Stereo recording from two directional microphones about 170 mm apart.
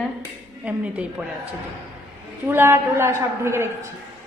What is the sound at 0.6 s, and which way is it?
Speech, 10° right (ahead or behind).